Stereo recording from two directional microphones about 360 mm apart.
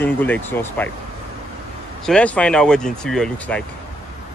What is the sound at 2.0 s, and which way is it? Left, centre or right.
Speech, centre.